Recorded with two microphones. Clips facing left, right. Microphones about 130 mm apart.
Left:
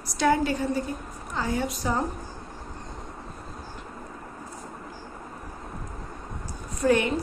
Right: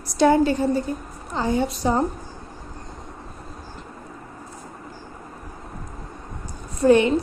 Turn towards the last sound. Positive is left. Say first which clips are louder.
# right 6 dB
turn(degrees=-25)  # may be behind; listen again after turning